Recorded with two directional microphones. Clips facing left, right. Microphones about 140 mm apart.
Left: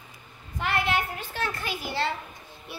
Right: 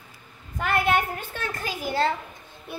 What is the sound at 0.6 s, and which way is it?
A child's voice, 50° right (ahead or behind).